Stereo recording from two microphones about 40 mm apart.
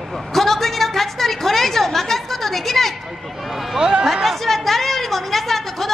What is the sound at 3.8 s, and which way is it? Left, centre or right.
Speech, centre.